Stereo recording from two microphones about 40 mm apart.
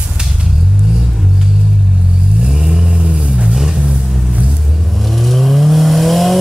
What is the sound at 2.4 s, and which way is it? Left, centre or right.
Vehicle, centre.